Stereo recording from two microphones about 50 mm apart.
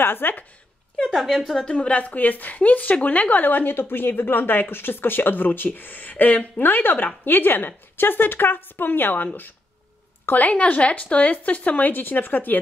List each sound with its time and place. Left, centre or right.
0.0 s speech: left
1.0 s a woman's voice: centre
1.6 s a woman's voice: centre
2.0 s a woman's voice: left